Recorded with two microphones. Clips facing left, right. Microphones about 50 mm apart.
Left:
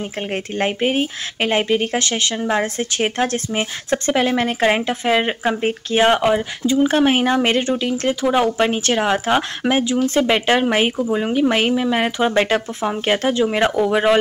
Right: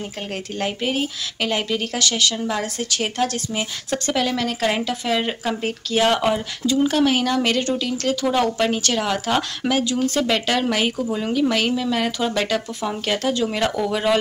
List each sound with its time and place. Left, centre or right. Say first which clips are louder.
0.3 s speech: left 5 dB; left